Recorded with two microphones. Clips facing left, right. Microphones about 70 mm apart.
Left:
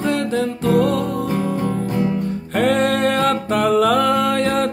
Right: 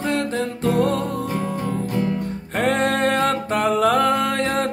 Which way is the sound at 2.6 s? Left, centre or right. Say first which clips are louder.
Left 3 dB; right.